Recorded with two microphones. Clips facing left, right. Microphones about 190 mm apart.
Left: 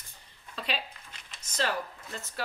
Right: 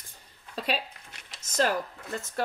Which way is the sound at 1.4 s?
40° right (ahead or behind).